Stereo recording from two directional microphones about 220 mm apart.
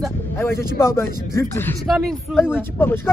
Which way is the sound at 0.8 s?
10° left (ahead or behind).